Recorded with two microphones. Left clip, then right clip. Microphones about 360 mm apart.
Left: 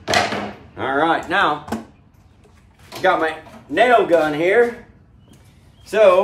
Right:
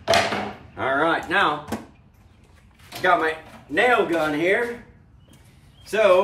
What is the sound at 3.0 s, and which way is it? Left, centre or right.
Speech, centre.